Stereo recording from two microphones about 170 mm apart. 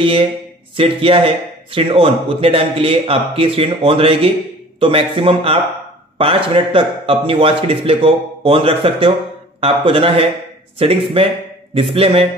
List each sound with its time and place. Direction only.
0.0 s a man's voice: 30° right (ahead or behind)